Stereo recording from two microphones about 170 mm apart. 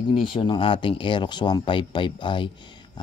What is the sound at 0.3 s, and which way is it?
Speech, 30° left (ahead or behind).